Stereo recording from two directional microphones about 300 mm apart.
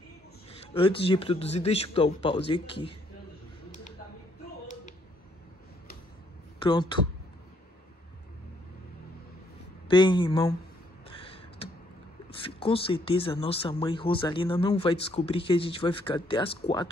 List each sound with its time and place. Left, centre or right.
0.5 s speech: centre
6.6 s speech: centre
9.8 s speech: centre
11.1 s a sound: centre
12.4 s speech: centre